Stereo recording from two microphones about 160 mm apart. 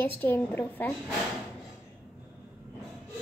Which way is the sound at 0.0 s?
10° left (ahead or behind).